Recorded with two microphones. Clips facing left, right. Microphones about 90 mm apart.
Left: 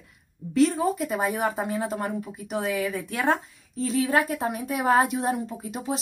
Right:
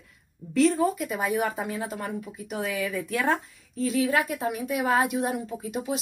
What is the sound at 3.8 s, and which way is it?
A woman's voice, 35° left (ahead or behind).